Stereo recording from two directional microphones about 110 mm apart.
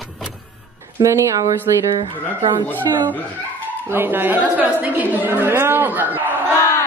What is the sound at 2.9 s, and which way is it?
Speech, 35° right (ahead or behind).